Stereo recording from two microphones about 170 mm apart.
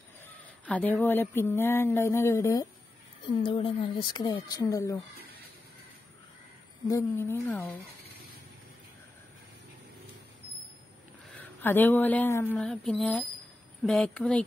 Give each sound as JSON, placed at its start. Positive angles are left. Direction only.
{"t": 0.7, "sound": "speech", "side_deg": 10}
{"t": 6.9, "sound": "speech", "side_deg": 15}
{"t": 11.6, "sound": "speech", "side_deg": 10}
{"t": 12.5, "sound": "speech", "side_deg": 5}